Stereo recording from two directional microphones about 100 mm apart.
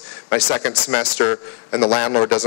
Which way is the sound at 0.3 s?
25° left (ahead or behind).